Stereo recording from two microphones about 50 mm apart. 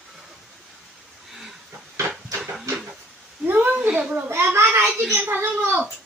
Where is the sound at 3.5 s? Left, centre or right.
Right.